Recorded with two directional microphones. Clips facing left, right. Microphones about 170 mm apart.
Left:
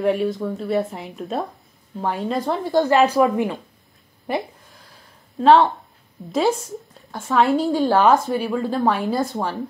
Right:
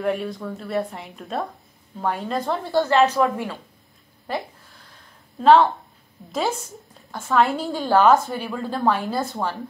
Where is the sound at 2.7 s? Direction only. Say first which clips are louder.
Left 2 dB; 15° left (ahead or behind).